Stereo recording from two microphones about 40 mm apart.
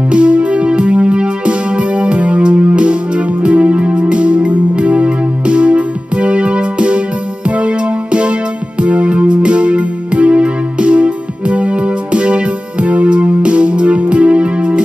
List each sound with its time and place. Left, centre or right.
0.1 s music: right